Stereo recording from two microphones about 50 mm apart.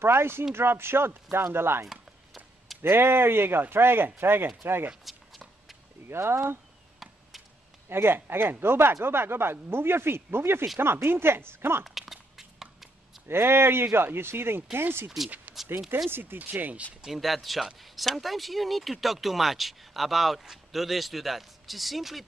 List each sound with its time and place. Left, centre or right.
0.0 s speech: right
1.9 s a sound: centre
2.8 s speech: right
5.1 s a sound: centre
6.0 s speech: right
7.9 s speech: right
11.8 s a sound: centre
13.3 s speech: right
15.2 s speech: right
16.1 s speech: right
16.3 s speech: right
17.0 s speech: centre